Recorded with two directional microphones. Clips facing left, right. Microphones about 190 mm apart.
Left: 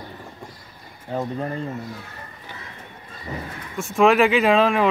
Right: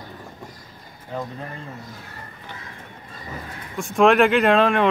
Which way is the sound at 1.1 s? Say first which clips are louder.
Left 5 dB; 35° left (ahead or behind).